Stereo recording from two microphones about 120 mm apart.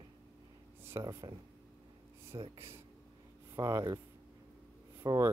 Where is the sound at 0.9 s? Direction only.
25° right (ahead or behind).